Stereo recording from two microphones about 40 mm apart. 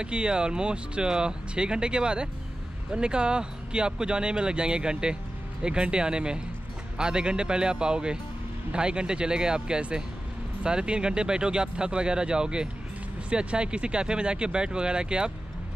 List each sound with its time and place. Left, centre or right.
0.0 s speech: right